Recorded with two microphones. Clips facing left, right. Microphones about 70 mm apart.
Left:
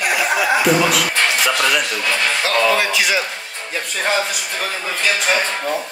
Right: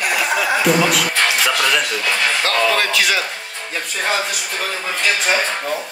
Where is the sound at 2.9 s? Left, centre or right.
Centre.